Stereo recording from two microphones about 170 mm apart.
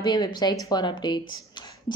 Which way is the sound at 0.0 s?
25° left (ahead or behind).